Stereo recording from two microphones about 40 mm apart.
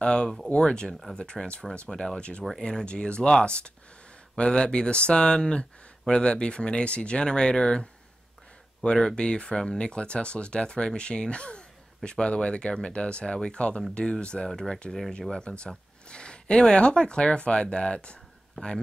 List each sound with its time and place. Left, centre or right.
0.0 s speech: left
9.1 s speech: left
14.9 s speech: centre
15.3 s speech: left
18.5 s speech: centre